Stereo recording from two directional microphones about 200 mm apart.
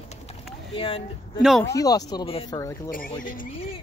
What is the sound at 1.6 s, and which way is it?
Speech, 15° left (ahead or behind).